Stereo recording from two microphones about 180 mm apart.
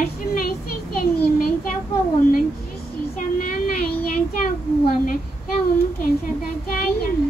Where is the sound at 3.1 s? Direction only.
50° left (ahead or behind).